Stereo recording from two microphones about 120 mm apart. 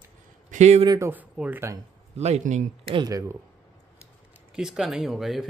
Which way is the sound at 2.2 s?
70° right (ahead or behind).